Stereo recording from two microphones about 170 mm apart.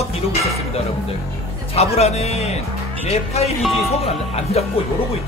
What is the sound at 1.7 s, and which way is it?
Speech, 40° left (ahead or behind).